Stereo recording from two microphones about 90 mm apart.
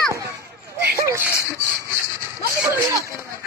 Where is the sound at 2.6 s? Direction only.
30° right (ahead or behind).